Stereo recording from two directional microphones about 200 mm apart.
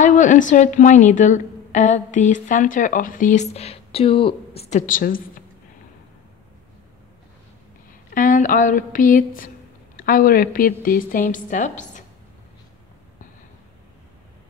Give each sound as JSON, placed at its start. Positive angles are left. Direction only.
{"t": 0.0, "sound": "a woman's voice", "side_deg": 40}
{"t": 8.1, "sound": "a woman's voice", "side_deg": 40}